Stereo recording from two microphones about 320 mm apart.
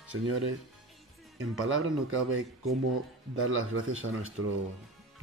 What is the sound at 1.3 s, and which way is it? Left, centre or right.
Speech, right.